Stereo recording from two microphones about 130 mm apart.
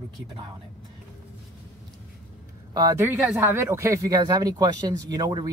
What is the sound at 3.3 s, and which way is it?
Speech, 20° right (ahead or behind).